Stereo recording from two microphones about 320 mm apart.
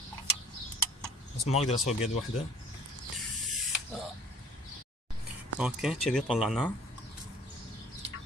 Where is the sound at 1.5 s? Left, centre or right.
Left.